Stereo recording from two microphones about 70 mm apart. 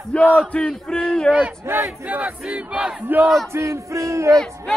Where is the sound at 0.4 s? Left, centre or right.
Centre.